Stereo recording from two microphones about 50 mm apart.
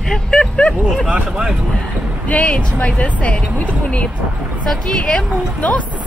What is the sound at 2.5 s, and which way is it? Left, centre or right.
A woman's voice, left.